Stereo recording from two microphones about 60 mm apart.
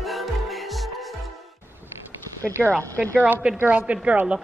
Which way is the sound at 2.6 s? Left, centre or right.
Right.